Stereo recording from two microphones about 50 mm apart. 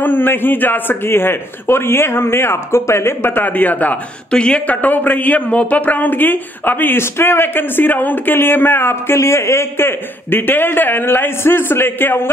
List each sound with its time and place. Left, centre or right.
0.0 s a man's voice: left
4.3 s speech: centre
4.8 s speech: left
7.0 s a man's voice: left
9.2 s a man's voice: left